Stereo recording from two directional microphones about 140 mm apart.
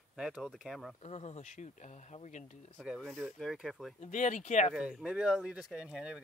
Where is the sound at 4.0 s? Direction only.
55° left (ahead or behind).